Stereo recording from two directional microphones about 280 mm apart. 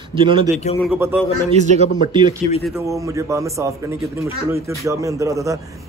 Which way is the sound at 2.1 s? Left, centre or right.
Centre.